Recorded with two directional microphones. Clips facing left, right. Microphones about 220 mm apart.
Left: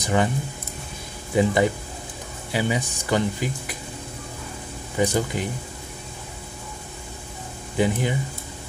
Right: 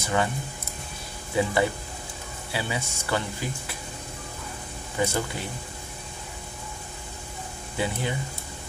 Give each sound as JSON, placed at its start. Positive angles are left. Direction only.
{"t": 0.0, "sound": "speech", "side_deg": 20}
{"t": 1.3, "sound": "speech", "side_deg": 20}
{"t": 4.9, "sound": "speech", "side_deg": 15}
{"t": 7.7, "sound": "speech", "side_deg": 15}